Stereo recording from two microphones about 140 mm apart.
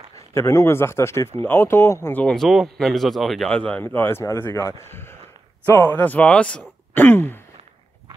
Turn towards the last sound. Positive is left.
turn(degrees=15)  # may be behind; listen again after turning